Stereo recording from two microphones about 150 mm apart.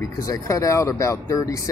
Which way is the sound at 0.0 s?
20° left (ahead or behind).